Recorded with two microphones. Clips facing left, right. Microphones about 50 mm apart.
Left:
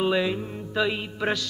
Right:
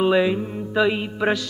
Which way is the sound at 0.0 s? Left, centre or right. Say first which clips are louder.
Right 5 dB; centre.